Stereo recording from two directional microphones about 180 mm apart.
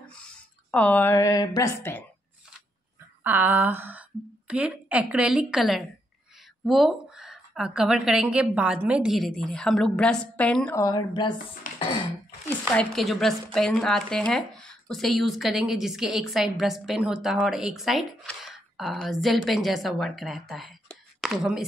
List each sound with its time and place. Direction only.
0.7 s a woman's voice: 5° left (ahead or behind)
3.3 s a sound: 10° right (ahead or behind)
4.5 s speech: 5° right (ahead or behind)
10.8 s speech: 20° left (ahead or behind)
11.6 s a sound: 50° left (ahead or behind)
12.7 s speech: centre (ahead or behind)